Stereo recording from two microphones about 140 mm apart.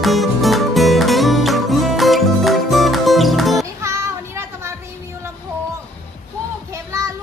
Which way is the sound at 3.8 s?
20° right (ahead or behind).